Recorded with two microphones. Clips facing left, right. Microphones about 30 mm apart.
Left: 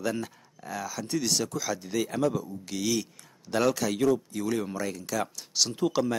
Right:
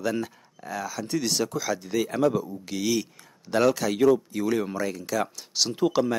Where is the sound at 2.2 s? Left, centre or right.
Centre.